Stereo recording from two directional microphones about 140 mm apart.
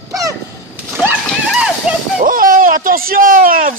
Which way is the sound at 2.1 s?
85° right.